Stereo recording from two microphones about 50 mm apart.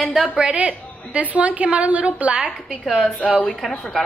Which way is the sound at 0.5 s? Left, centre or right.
Right.